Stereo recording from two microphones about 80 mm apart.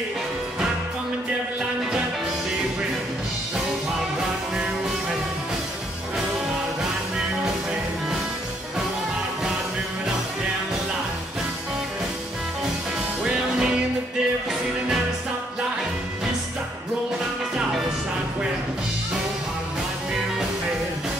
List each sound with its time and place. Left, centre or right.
13.2 s music: centre